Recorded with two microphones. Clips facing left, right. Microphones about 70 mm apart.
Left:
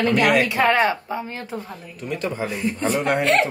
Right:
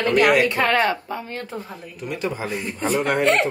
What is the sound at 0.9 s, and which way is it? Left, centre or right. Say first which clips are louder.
Speech: even; centre.